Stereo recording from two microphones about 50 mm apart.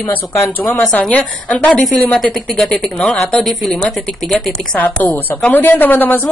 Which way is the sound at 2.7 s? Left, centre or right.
Centre.